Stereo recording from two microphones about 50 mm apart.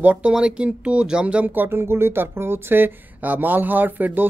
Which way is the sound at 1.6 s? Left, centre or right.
Right.